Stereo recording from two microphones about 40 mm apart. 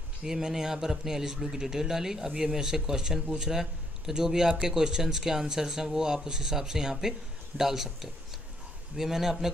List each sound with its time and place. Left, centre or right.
0.2 s a man's voice: centre